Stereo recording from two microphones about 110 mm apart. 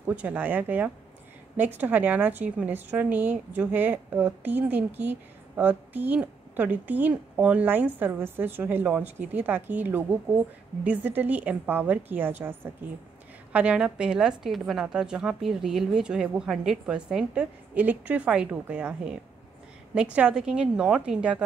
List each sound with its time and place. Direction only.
0.0 s a woman's voice: 15° right (ahead or behind)